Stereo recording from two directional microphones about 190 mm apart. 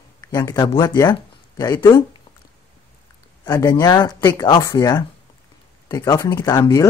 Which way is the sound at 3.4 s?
15° left (ahead or behind).